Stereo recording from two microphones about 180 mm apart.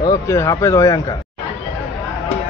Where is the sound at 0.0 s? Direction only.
15° left (ahead or behind).